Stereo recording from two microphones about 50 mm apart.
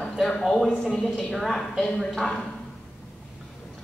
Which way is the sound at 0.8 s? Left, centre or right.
Centre.